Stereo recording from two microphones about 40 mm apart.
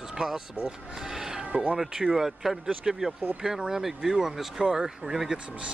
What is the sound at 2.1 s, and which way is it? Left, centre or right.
Speech, centre.